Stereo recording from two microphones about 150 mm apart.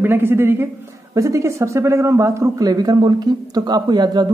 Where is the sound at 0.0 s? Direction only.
15° right (ahead or behind).